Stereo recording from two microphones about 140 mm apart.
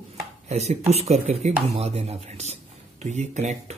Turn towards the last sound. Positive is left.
turn(degrees=-55)  # may be behind; listen again after turning